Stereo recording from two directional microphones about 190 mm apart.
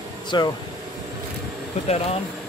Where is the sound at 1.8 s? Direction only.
35° left (ahead or behind).